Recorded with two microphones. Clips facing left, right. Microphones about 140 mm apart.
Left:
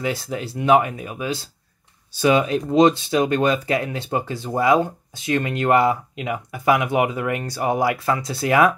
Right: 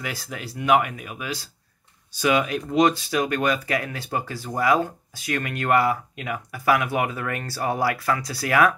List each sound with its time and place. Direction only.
0.0 s speech: 30° left (ahead or behind)